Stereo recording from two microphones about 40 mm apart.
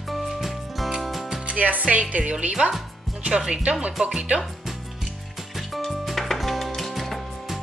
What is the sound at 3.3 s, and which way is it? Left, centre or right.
Speech, right.